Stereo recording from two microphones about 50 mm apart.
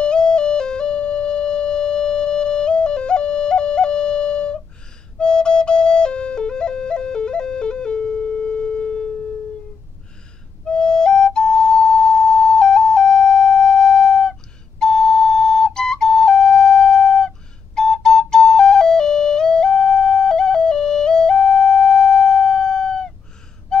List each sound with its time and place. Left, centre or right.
0.0 s music: centre
5.2 s flute: centre
10.6 s flute: centre
23.7 s music: centre